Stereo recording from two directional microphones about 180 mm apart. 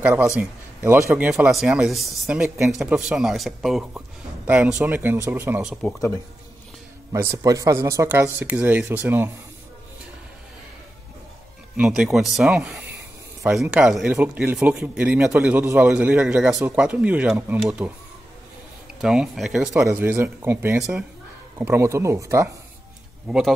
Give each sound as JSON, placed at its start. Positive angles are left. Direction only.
{"t": 0.0, "sound": "speech", "side_deg": -10}
{"t": 7.1, "sound": "speech", "side_deg": -15}
{"t": 11.7, "sound": "speech", "side_deg": -5}
{"t": 18.9, "sound": "speech", "side_deg": -5}
{"t": 19.7, "sound": "speech", "side_deg": -15}
{"t": 23.2, "sound": "speech", "side_deg": -5}